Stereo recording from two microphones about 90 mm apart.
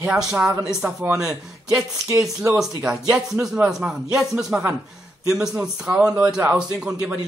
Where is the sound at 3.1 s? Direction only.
5° right (ahead or behind).